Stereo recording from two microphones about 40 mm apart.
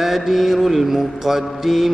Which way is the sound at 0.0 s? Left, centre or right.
Centre.